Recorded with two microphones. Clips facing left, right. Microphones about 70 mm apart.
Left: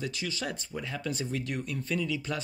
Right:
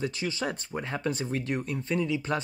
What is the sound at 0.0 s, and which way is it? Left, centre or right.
Speech, right.